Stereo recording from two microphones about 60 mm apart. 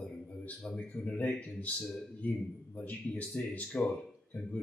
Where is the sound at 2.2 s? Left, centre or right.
Left.